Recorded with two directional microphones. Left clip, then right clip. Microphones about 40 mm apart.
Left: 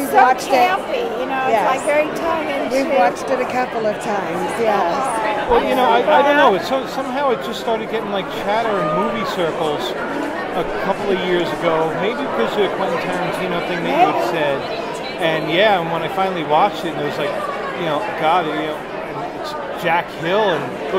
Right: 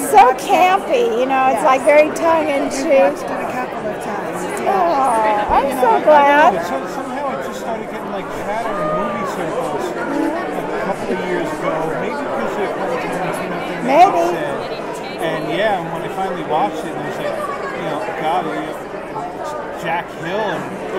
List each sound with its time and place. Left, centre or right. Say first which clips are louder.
0.1 s speech: right 3 dB; right
1.3 s speech: right 1 dB; right
4.6 s speech: right 4 dB; right
5.2 s chatter: right 2 dB; right
5.9 s speech: right 4 dB; right
11.1 s a man's voice: left 2 dB; right
20.2 s speech: left 4 dB; right